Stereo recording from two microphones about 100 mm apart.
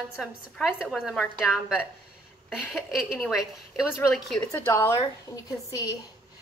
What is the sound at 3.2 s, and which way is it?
A woman's voice, 5° right (ahead or behind).